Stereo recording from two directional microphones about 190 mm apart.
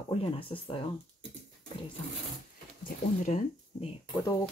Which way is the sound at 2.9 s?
40° left (ahead or behind).